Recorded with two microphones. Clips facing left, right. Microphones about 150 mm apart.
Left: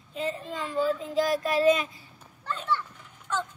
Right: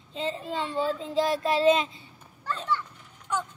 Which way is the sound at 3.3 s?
15° right (ahead or behind).